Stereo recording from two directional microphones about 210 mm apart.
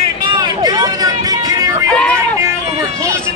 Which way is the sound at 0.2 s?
20° right (ahead or behind).